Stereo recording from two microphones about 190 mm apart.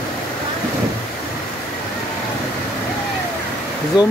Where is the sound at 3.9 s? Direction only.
20° left (ahead or behind).